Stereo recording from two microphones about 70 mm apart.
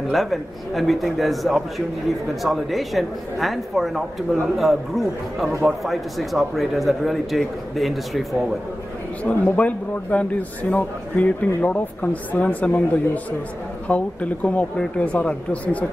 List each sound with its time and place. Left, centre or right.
0.1 s speech: centre
9.2 s a man's voice: centre